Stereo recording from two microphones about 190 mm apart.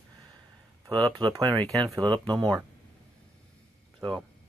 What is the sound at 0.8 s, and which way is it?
Speech, 25° right (ahead or behind).